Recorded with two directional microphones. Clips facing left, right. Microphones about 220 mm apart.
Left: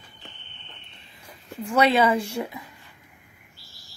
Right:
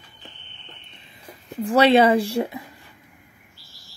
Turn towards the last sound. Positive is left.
turn(degrees=-35)  # may be behind; listen again after turning